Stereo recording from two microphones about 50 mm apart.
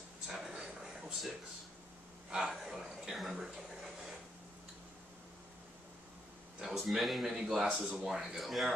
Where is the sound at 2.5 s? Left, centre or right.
Centre.